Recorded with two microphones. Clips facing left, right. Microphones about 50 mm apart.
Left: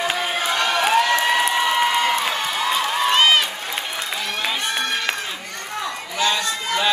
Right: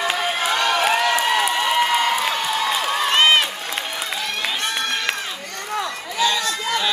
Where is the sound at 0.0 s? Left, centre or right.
Centre.